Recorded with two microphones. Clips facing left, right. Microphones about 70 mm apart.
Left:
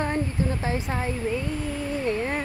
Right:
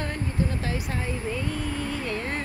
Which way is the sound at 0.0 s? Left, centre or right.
Left.